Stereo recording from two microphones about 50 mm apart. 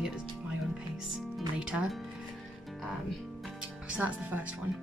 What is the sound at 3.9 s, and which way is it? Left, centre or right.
Speech, right.